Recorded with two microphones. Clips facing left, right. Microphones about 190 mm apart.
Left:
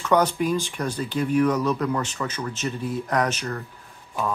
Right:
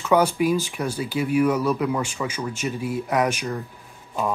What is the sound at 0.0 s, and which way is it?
Speech, 10° right (ahead or behind).